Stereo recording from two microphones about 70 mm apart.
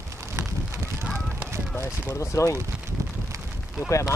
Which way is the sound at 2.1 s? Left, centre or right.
Left.